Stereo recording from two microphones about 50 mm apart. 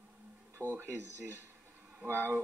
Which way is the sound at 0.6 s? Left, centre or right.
Right.